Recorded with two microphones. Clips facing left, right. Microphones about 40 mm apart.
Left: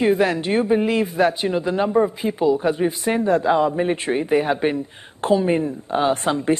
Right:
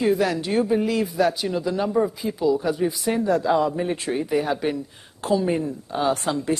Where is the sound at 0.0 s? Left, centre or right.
Left.